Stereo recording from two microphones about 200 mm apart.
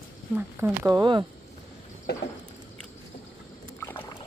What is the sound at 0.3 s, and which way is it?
Speech, 10° right (ahead or behind).